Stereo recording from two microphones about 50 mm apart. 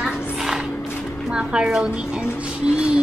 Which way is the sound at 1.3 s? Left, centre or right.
Centre.